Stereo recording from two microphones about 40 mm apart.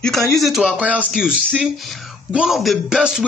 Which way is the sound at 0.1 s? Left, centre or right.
Centre.